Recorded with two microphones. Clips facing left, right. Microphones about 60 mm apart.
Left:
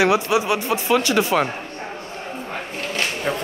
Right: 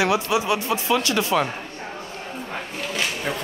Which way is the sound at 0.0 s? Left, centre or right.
Left.